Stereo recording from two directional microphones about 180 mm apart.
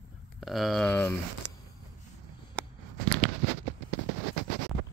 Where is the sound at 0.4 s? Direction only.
Centre (ahead or behind).